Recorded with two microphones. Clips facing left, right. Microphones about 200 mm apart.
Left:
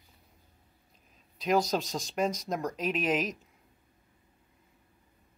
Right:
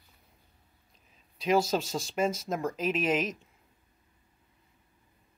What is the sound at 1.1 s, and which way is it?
Speech, centre (ahead or behind).